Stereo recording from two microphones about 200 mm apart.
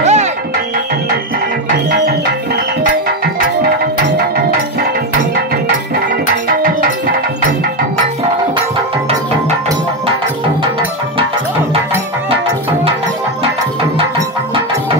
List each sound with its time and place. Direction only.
0.0 s music: 35° right (ahead or behind)